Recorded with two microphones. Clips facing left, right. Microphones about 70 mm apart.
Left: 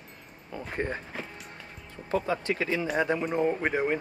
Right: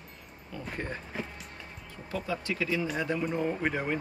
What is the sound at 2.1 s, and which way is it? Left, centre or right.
Speech, left.